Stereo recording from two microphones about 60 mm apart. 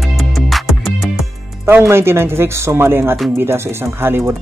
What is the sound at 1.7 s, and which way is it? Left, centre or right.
Speech, right.